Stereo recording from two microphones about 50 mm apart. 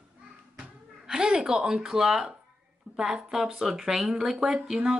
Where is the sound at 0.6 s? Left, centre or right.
Centre.